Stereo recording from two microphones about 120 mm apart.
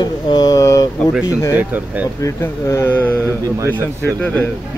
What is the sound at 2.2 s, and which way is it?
Speech, 25° left (ahead or behind).